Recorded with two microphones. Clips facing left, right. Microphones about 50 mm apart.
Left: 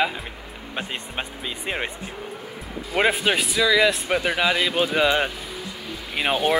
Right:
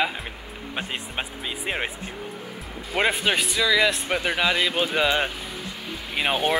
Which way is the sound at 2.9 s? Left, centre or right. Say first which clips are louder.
Left 2 dB; centre.